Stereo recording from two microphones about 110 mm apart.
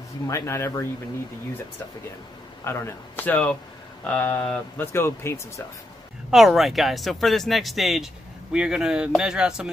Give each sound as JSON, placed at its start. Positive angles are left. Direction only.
{"t": 0.3, "sound": "speech", "side_deg": 25}
{"t": 2.6, "sound": "speech", "side_deg": 25}
{"t": 6.3, "sound": "speech", "side_deg": 0}